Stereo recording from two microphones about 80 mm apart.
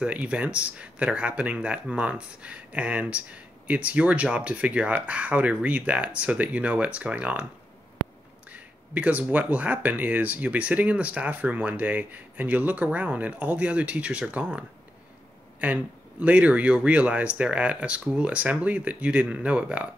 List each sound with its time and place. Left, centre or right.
0.0 s speech: centre
8.5 s speech: centre
15.6 s speech: centre